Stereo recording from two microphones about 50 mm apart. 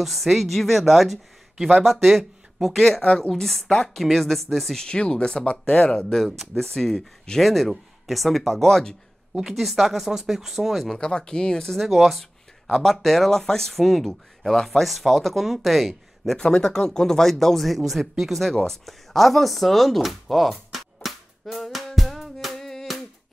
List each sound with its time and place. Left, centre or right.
0.0 s speech: centre
3.9 s speech: centre
4.8 s speech: centre
9.3 s speech: centre
11.0 s speech: centre
11.7 s speech: centre
16.3 s speech: centre
18.7 s a sound: centre